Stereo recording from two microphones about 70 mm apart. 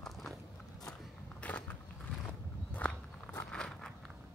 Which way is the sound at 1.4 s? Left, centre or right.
Centre.